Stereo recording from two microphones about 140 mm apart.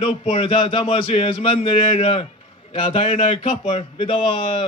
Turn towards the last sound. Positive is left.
turn(degrees=40)  # may be behind; listen again after turning